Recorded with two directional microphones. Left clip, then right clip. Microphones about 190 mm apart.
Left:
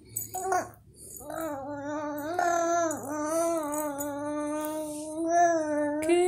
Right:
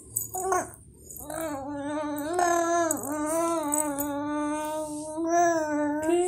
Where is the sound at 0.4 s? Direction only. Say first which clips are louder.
Right 1 dB; 5° left (ahead or behind).